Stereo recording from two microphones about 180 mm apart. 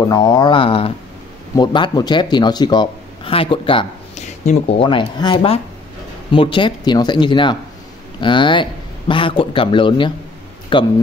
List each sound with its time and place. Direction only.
0.1 s speech: 25° left (ahead or behind)